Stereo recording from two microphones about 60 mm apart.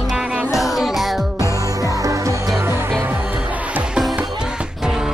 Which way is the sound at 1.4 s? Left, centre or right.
Right.